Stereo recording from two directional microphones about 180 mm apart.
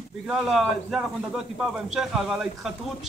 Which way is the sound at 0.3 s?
Centre (ahead or behind).